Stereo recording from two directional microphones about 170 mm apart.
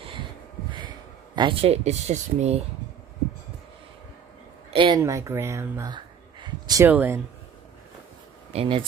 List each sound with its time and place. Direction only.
0.7 s speech: 25° right (ahead or behind)
4.6 s speech: 30° right (ahead or behind)
5.0 s speech: 15° right (ahead or behind)
6.8 s speech: 10° right (ahead or behind)
8.5 s speech: 30° right (ahead or behind)